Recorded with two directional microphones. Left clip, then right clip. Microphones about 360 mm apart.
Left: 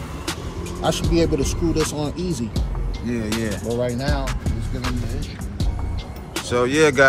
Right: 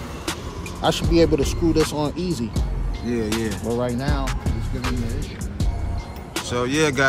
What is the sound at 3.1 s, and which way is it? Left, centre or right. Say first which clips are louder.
Music: right 1 dB; centre.